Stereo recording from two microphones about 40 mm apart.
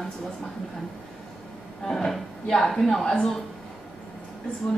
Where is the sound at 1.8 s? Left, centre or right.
Centre.